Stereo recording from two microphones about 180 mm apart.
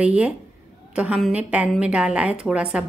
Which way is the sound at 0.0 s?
5° right (ahead or behind).